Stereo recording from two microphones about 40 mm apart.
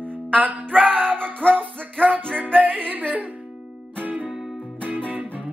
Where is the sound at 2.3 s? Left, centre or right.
Left.